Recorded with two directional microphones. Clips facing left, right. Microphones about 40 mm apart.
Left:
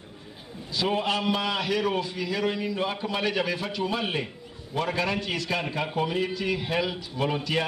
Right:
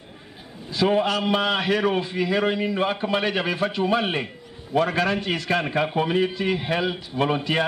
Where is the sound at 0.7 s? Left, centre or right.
Right.